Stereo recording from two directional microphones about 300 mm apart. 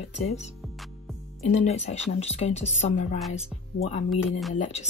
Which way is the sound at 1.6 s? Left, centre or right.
Left.